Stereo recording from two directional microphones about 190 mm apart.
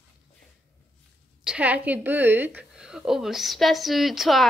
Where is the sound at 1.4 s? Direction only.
5° right (ahead or behind).